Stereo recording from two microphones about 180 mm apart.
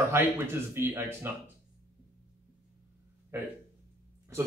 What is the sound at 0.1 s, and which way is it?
Speech, 15° right (ahead or behind).